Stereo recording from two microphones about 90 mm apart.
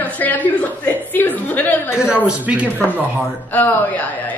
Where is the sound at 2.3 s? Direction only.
15° right (ahead or behind).